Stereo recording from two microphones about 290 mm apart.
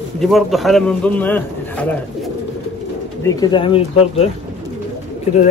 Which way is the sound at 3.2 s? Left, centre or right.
Centre.